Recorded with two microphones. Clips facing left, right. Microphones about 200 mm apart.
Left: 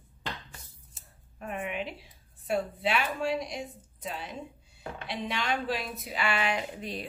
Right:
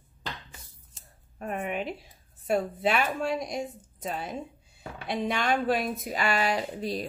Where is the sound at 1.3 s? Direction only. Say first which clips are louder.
Right 3 dB; 40° right (ahead or behind).